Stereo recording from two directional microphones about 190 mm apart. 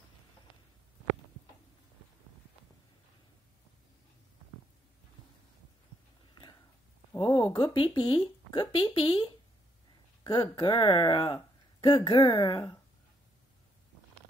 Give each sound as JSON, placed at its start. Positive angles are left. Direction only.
{"t": 7.2, "sound": "speech", "side_deg": 20}